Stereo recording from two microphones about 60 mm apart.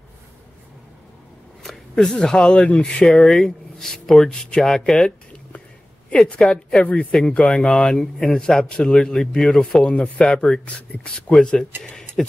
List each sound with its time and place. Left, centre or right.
1.6 s speech: centre
3.1 s a man's voice: centre